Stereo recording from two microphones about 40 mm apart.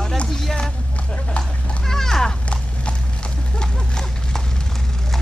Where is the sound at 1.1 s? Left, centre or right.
Left.